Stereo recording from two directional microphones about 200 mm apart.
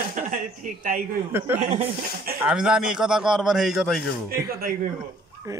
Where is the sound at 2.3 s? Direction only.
5° right (ahead or behind).